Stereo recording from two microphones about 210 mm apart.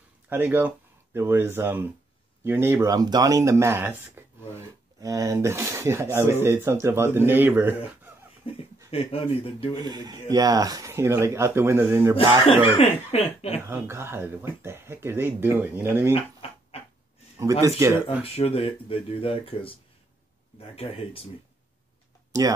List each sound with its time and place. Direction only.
0.3 s speech: 10° right (ahead or behind)
8.5 s speech: 25° left (ahead or behind)
9.8 s speech: 20° right (ahead or behind)
12.6 s speech: 25° left (ahead or behind)
13.7 s speech: 10° right (ahead or behind)
17.4 s speech: 15° right (ahead or behind)
18.2 s speech: 30° left (ahead or behind)